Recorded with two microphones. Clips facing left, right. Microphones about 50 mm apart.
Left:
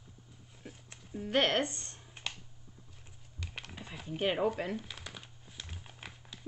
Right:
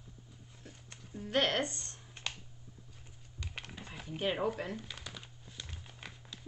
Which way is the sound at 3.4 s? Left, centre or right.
Centre.